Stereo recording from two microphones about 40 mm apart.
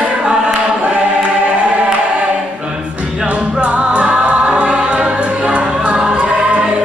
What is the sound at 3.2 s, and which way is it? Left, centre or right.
Music, right.